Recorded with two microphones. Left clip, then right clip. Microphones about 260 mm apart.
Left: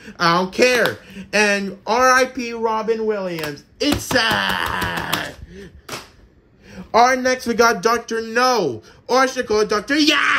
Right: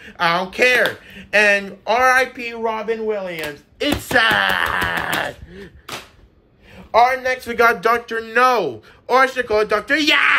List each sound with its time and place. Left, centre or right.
0.2 s speech: centre
6.9 s speech: centre